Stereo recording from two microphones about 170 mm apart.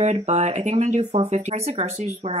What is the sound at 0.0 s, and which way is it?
Speech, 40° right (ahead or behind).